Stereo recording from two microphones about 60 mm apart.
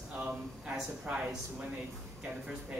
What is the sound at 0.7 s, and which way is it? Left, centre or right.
Speech, centre.